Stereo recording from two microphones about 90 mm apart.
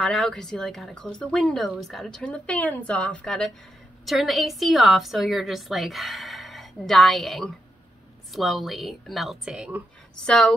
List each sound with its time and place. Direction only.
0.0 s speech: 5° left (ahead or behind)
4.0 s a woman's voice: centre (ahead or behind)
10.2 s speech: 10° left (ahead or behind)